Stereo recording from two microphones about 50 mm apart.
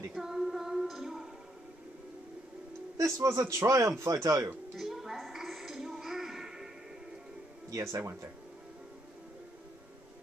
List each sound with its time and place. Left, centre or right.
0.1 s music: centre
3.2 s speech: right
4.7 s music: centre
7.7 s speech: right